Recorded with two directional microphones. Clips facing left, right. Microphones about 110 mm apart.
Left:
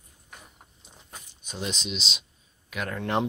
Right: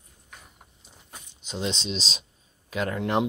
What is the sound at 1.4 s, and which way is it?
Speech, 25° right (ahead or behind).